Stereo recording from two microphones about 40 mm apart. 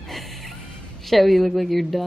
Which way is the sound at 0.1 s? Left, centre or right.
Centre.